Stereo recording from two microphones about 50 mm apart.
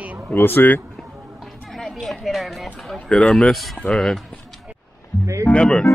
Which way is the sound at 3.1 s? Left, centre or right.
Left.